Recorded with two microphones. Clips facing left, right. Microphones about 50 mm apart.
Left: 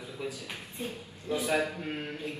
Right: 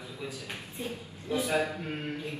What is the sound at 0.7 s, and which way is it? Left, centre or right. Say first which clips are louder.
Speech: even; left.